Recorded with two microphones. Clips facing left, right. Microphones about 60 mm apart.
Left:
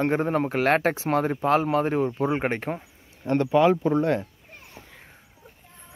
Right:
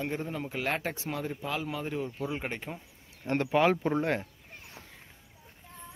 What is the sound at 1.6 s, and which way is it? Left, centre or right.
Speech, left.